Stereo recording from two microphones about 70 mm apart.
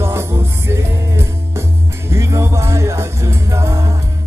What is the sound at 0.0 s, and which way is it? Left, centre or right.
Music, right.